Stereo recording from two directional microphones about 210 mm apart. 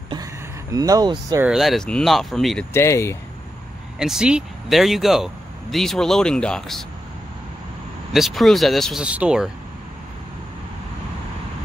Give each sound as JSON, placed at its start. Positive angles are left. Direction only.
{"t": 0.1, "sound": "a sound", "side_deg": -15}
{"t": 1.4, "sound": "speech", "side_deg": 0}
{"t": 2.7, "sound": "speech", "side_deg": 10}
{"t": 4.0, "sound": "speech", "side_deg": -5}
{"t": 8.1, "sound": "speech", "side_deg": 0}